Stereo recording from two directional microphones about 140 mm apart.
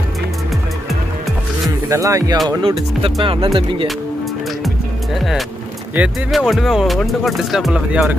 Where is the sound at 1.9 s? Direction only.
25° right (ahead or behind).